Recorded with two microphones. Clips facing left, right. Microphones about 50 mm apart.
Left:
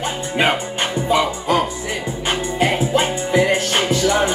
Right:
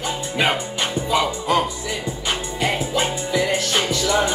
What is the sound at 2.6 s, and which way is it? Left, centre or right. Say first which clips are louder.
Music: left 4 dB; left.